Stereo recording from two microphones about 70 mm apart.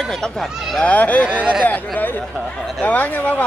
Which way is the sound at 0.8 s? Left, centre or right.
Left.